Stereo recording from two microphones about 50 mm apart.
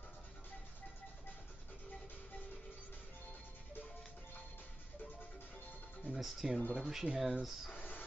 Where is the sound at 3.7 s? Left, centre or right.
Left.